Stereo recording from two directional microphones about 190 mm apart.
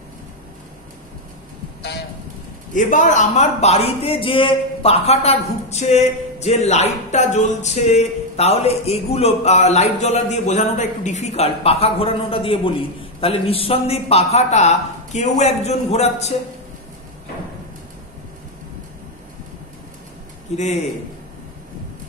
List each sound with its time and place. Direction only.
2.7 s a man's voice: 40° left (ahead or behind)
20.5 s a man's voice: 35° left (ahead or behind)